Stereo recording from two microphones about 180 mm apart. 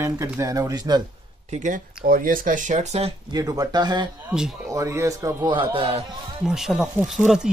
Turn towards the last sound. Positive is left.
turn(degrees=0)  # may be behind; listen again after turning